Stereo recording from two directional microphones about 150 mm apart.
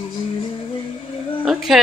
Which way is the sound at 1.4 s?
5° right (ahead or behind).